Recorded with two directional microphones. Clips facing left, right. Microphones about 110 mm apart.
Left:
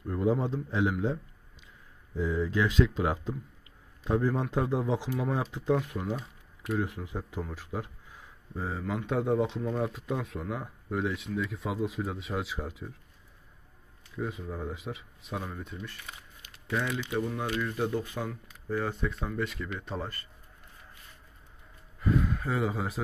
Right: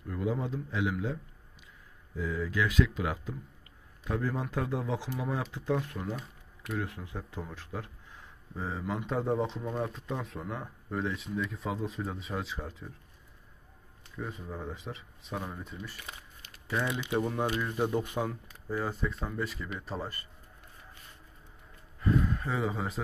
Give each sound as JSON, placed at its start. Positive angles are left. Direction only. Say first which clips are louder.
{"t": 0.0, "sound": "a man's voice", "louder": "left 5 dB", "side_deg": 30}
{"t": 2.1, "sound": "speech", "louder": "left 3 dB", "side_deg": 25}
{"t": 4.1, "sound": "speech", "louder": "left 5 dB", "side_deg": 20}
{"t": 8.5, "sound": "speech", "louder": "left 1 dB", "side_deg": 0}
{"t": 14.1, "sound": "speech", "louder": "left 4 dB", "side_deg": 0}
{"t": 16.8, "sound": "speech", "louder": "right 3 dB", "side_deg": -20}
{"t": 18.7, "sound": "speech", "louder": "left 2 dB", "side_deg": -5}
{"t": 22.0, "sound": "speech", "louder": "even", "side_deg": 0}